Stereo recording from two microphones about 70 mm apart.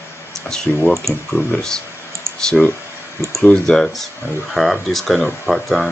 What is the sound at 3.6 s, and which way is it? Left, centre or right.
Speech, centre.